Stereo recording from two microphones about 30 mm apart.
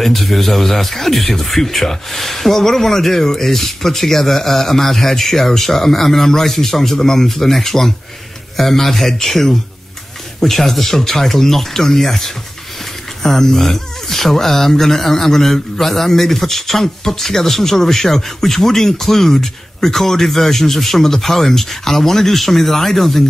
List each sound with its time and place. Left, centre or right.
0.0 s speech: centre